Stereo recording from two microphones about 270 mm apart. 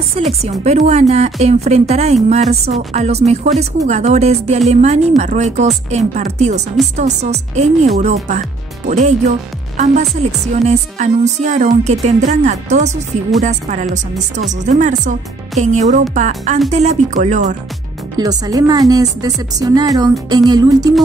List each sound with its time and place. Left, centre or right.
0.4 s speech: right
10.5 s speech: right
18.1 s a woman's voice: centre